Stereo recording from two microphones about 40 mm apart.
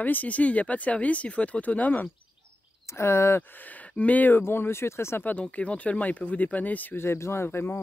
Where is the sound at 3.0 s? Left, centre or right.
Left.